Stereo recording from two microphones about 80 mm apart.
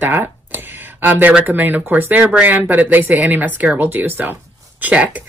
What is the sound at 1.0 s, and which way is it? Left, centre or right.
Speech, right.